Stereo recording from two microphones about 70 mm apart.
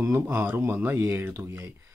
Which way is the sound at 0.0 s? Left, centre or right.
Right.